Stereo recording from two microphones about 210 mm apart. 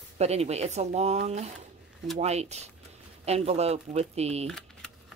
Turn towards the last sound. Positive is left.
turn(degrees=5)  # may be behind; listen again after turning